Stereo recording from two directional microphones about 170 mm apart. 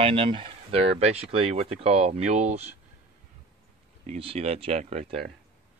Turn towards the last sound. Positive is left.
turn(degrees=-40)  # may be behind; listen again after turning